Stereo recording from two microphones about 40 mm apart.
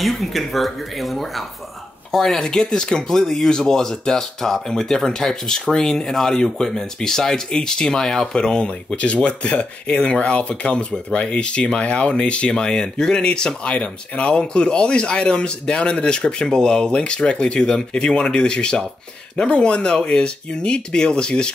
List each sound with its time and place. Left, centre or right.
0.0 s speech: centre
8.4 s speech: left